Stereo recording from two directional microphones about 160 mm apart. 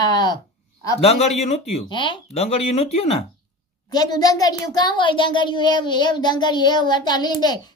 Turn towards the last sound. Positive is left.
turn(degrees=25)  # may be behind; listen again after turning